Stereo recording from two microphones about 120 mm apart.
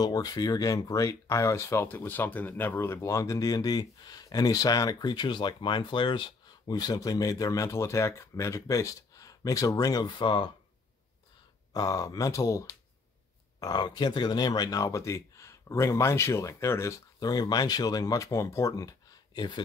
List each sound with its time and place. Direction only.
0.0 s speech: 30° left (ahead or behind)
11.7 s speech: 30° left (ahead or behind)